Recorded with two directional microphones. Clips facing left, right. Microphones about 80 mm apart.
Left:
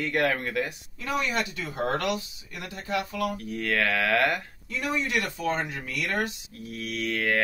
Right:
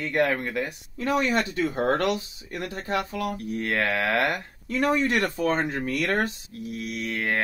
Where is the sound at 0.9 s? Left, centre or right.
Right.